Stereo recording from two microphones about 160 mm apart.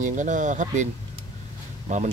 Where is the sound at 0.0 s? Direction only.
50° right (ahead or behind).